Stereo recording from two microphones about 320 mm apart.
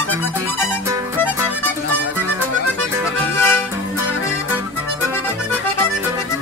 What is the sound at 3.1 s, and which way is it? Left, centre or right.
Music, centre.